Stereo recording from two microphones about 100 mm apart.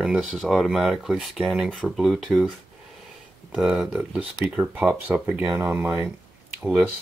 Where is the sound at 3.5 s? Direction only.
5° right (ahead or behind).